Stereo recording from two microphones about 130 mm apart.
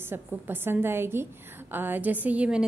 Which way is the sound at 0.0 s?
15° right (ahead or behind).